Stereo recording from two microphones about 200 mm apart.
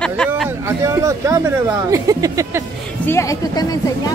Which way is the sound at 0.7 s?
15° right (ahead or behind).